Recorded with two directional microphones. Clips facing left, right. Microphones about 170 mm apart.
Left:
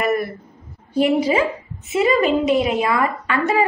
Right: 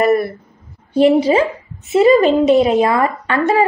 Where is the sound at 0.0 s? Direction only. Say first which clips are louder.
Right 6 dB; 30° right (ahead or behind).